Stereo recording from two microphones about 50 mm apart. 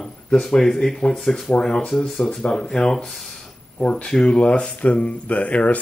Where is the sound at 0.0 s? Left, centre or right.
Centre.